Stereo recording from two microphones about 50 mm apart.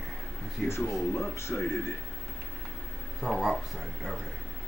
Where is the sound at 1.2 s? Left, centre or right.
Left.